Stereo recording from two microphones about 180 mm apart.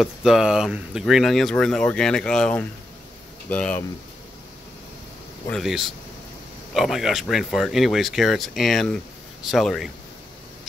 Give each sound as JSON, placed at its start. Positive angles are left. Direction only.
{"t": 0.0, "sound": "speech", "side_deg": 0}
{"t": 5.5, "sound": "speech", "side_deg": 0}